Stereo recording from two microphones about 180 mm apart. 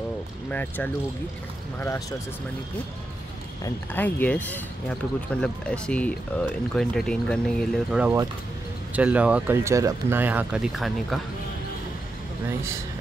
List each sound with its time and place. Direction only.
0.5 s speech: 10° left (ahead or behind)
3.6 s speech: 10° left (ahead or behind)
7.9 s speech: 10° right (ahead or behind)